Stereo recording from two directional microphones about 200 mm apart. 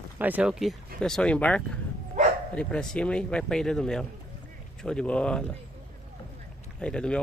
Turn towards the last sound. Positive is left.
turn(degrees=5)  # may be behind; listen again after turning